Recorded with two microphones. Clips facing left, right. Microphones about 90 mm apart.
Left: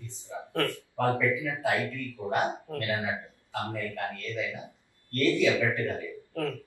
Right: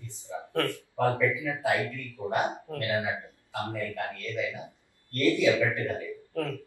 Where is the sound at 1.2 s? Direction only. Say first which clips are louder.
Right 1 dB; 20° right (ahead or behind).